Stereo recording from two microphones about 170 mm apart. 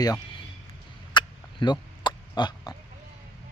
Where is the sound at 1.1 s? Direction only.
25° left (ahead or behind).